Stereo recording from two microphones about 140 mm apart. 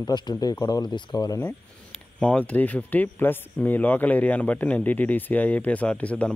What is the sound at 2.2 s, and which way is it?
Speech, 10° left (ahead or behind).